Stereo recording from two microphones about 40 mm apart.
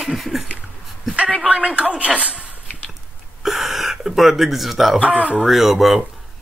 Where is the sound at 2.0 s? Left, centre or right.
Right.